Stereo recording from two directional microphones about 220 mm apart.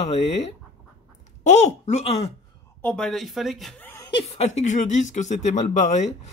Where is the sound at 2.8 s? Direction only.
Centre (ahead or behind); by 6.1 s 30° left (ahead or behind).